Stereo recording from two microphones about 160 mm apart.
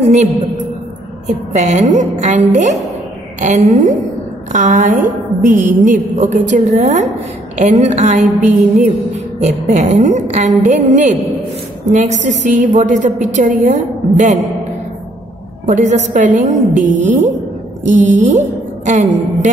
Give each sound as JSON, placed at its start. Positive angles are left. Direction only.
{"t": 0.0, "sound": "a woman's voice", "side_deg": -45}
{"t": 1.5, "sound": "a woman's voice", "side_deg": -45}
{"t": 15.6, "sound": "a woman's voice", "side_deg": -50}